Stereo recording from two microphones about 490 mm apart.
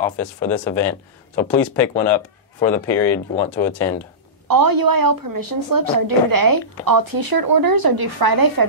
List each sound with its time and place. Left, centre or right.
0.0 s speech: centre
4.5 s a woman's voice: right